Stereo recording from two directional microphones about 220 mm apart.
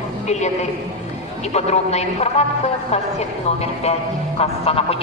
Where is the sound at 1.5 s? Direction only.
30° left (ahead or behind).